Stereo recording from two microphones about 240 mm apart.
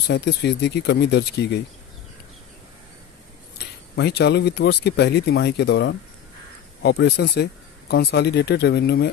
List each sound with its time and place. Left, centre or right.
0.1 s speech: left
3.5 s speech: left